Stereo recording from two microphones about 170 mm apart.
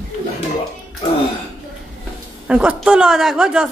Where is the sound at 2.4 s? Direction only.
5° right (ahead or behind).